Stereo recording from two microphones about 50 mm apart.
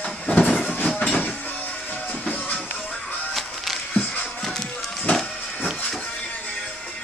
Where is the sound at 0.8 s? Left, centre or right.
Left.